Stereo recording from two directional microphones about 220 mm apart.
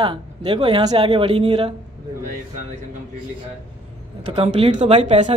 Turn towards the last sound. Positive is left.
turn(degrees=-30)  # may be behind; listen again after turning